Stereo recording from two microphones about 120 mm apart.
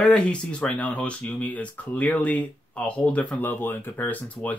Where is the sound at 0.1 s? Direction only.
10° left (ahead or behind).